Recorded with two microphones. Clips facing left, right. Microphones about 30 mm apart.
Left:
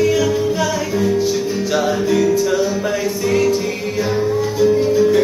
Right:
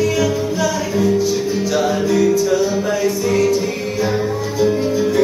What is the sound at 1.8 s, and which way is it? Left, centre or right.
Music, centre.